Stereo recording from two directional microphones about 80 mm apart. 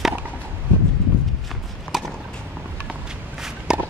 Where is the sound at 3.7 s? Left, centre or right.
Centre.